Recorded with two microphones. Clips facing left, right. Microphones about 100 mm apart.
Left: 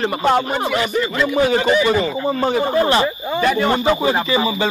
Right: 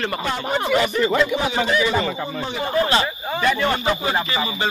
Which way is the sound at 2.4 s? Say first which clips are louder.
Left 10 dB; 45° left (ahead or behind).